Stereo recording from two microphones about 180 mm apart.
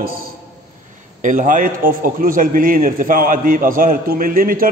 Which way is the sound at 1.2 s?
45° right (ahead or behind).